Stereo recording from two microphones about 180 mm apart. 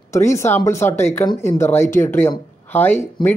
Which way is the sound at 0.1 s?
15° left (ahead or behind).